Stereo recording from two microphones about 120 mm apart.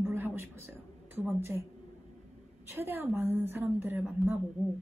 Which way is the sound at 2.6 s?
20° right (ahead or behind).